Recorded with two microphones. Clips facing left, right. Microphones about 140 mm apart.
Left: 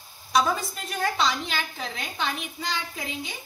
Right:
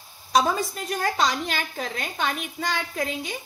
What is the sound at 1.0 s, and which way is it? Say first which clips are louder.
A woman's voice: right 1 dB; 45° right (ahead or behind).